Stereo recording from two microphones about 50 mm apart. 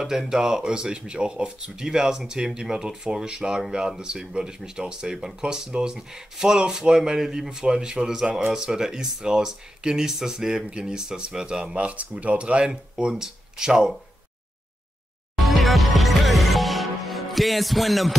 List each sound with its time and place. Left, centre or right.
0.0 s speech: centre
8.3 s speech: right
8.5 s speech: centre
15.3 s music: centre